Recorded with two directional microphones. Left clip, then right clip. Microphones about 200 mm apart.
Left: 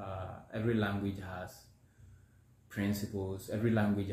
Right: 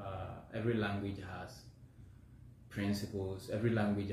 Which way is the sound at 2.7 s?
20° left (ahead or behind).